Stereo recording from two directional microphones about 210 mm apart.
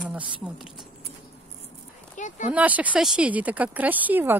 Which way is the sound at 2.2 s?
35° left (ahead or behind).